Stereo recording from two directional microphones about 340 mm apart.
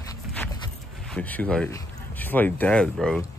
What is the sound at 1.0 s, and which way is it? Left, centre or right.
Speech, centre.